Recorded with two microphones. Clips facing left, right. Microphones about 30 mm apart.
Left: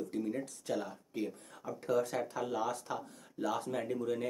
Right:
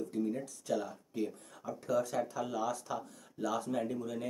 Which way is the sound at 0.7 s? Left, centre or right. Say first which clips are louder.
Right 4 dB; left.